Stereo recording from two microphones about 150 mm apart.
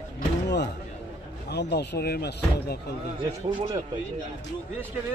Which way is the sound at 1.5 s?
90° left.